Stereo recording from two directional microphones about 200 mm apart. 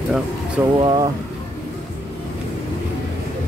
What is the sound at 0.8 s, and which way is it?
Speech, 20° right (ahead or behind).